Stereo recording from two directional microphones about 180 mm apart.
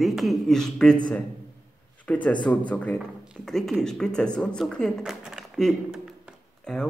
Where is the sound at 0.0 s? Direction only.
Centre (ahead or behind).